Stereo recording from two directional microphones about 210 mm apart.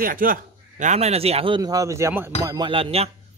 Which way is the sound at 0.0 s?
40° right (ahead or behind).